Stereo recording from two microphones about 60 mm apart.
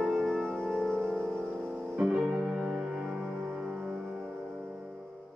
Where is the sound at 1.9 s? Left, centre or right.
Centre.